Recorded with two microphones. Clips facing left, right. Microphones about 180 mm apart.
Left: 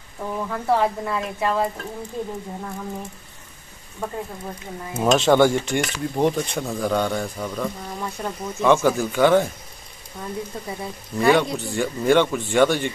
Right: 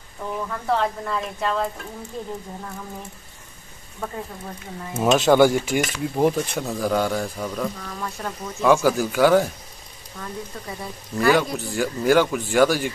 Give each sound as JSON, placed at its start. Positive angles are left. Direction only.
{"t": 0.7, "sound": "speech", "side_deg": 10}
{"t": 4.9, "sound": "speech", "side_deg": -5}
{"t": 7.8, "sound": "speech", "side_deg": 20}
{"t": 8.5, "sound": "speech", "side_deg": 0}
{"t": 11.1, "sound": "speech", "side_deg": 0}